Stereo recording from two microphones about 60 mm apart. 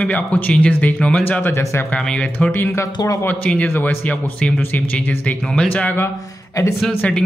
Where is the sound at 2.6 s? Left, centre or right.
Left.